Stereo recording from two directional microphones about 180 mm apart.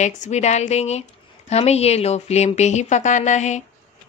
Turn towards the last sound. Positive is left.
turn(degrees=40)  # may be behind; listen again after turning